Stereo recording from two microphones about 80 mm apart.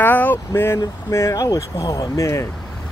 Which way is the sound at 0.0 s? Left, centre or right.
Left.